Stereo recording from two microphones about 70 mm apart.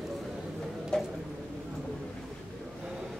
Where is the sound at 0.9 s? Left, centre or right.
Centre.